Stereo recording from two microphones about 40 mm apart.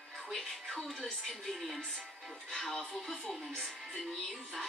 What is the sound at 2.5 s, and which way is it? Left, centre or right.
Speech, centre.